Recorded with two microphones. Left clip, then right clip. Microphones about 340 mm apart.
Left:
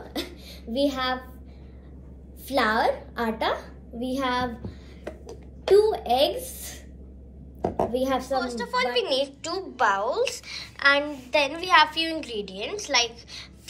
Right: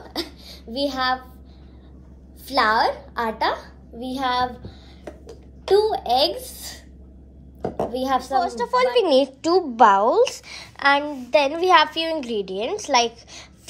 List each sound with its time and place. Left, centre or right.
0.1 s a sound: centre
2.4 s a woman's voice: centre
2.7 s speech: centre
5.8 s speech: centre
7.9 s speech: centre
8.4 s a woman's voice: right